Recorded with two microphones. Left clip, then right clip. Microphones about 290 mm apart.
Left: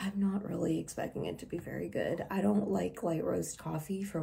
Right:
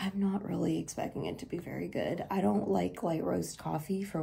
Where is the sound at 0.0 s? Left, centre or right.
Centre.